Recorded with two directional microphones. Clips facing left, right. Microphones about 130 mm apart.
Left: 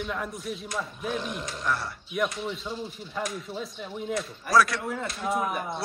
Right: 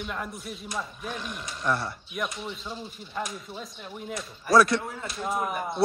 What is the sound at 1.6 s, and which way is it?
Speech, 20° right (ahead or behind).